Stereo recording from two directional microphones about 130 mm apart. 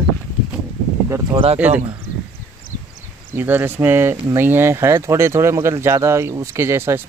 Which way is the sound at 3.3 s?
15° right (ahead or behind).